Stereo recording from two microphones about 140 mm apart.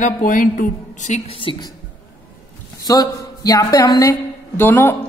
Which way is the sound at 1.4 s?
40° left (ahead or behind).